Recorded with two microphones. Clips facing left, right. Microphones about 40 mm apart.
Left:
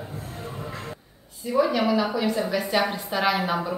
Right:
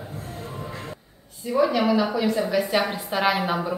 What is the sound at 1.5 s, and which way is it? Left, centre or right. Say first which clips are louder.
A woman's voice: right 1 dB; centre.